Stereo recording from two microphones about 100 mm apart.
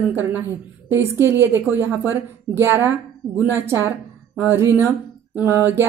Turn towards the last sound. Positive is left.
turn(degrees=-20)  # may be behind; listen again after turning